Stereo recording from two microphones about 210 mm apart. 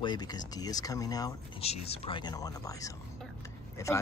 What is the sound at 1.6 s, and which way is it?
Speech, 30° left (ahead or behind).